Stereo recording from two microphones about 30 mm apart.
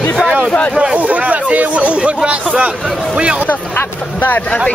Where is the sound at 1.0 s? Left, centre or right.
Right.